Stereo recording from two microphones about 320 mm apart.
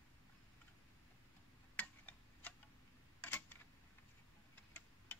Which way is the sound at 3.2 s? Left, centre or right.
Centre.